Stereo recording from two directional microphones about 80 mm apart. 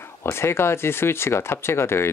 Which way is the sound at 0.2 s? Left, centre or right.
Left.